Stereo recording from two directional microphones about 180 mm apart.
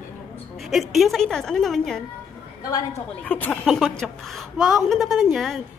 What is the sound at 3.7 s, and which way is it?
A woman's voice, centre (ahead or behind).